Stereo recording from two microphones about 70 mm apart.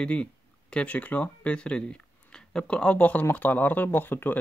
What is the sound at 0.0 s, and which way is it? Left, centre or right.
Speech, centre.